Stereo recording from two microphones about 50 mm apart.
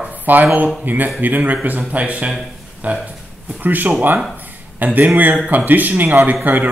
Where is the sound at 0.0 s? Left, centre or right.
Right.